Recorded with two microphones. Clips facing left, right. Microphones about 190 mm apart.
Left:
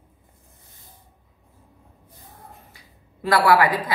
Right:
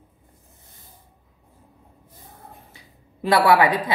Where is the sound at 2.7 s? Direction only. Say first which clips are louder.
Right 2 dB; 25° right (ahead or behind).